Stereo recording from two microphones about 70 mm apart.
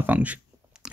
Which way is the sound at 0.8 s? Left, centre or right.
Centre.